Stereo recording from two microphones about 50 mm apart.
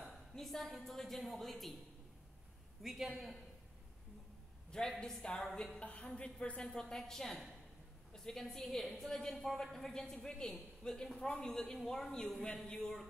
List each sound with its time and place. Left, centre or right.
0.3 s a woman's voice: centre
2.8 s a woman's voice: centre
4.6 s a man's voice: centre
5.8 s a woman's voice: left